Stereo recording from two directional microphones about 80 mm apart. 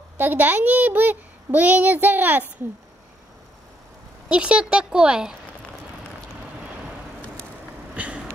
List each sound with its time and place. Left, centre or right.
0.2 s a child's voice: right
4.3 s speech: centre
7.9 s vehicle: centre